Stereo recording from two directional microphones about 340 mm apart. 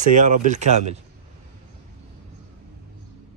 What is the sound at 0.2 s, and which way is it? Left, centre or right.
Speech, right.